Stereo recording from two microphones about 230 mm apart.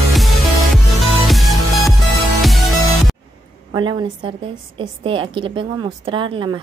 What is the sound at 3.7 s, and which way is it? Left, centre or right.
A woman's voice, centre.